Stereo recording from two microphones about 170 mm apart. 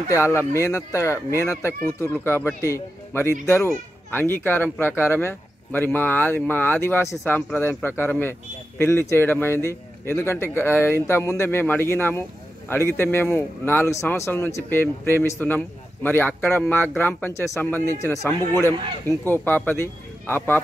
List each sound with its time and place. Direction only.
0.1 s a man's voice: 15° left (ahead or behind)